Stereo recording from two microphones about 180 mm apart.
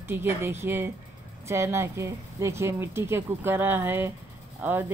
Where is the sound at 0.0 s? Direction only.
10° right (ahead or behind).